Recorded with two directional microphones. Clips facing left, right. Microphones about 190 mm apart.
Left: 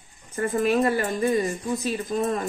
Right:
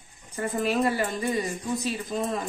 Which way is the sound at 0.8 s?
55° left (ahead or behind).